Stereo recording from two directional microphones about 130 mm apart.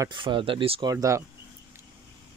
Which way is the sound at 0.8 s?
25° right (ahead or behind).